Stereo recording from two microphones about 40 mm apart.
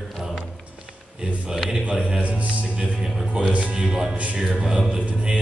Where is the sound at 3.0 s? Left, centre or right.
Centre.